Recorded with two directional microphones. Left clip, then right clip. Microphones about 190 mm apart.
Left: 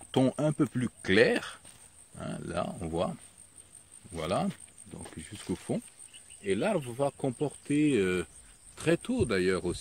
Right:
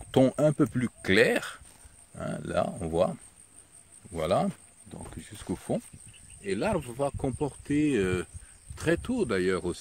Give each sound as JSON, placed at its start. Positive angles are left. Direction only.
{"t": 0.1, "sound": "speech", "side_deg": -40}
{"t": 4.9, "sound": "speech", "side_deg": -15}